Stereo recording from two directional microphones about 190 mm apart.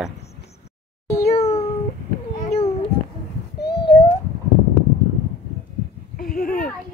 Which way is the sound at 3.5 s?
60° left (ahead or behind).